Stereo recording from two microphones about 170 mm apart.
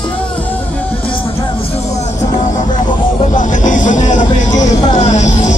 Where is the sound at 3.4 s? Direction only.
50° left (ahead or behind).